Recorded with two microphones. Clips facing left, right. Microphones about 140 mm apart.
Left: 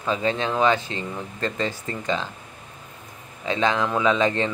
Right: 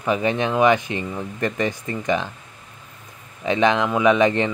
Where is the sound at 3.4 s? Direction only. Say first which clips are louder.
Right 4 dB; 20° right (ahead or behind).